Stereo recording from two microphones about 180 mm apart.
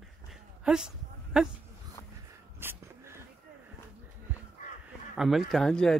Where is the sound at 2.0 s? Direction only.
15° left (ahead or behind).